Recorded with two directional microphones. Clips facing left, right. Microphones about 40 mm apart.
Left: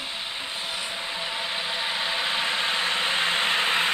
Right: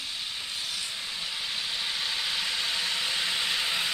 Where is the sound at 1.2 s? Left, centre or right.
Left.